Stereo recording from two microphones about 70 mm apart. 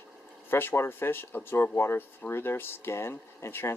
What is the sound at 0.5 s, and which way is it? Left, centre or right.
Speech, left.